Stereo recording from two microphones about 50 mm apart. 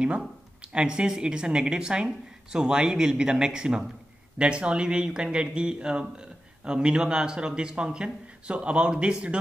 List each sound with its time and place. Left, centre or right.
0.6 s speech: centre